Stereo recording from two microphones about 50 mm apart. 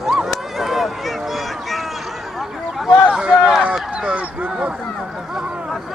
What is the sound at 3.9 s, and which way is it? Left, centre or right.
Dog, right.